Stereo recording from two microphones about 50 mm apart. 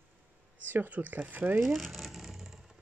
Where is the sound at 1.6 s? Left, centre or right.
Centre.